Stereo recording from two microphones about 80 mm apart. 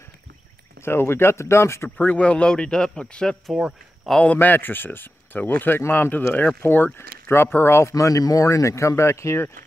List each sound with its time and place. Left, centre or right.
0.8 s speech: left
2.0 s a man's voice: centre
3.5 s speech: centre
4.2 s speech: centre
7.9 s speech: left